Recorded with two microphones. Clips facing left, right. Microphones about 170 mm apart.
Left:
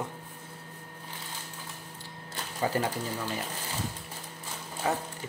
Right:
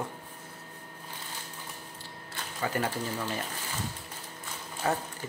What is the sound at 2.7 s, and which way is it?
Speech, 30° left (ahead or behind).